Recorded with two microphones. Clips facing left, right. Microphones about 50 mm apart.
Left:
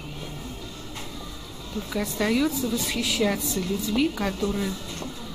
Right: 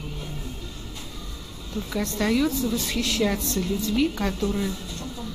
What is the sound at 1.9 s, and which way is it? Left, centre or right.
A woman's voice, centre.